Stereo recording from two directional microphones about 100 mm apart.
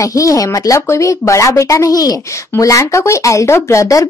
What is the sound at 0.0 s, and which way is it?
Speech, 35° left (ahead or behind).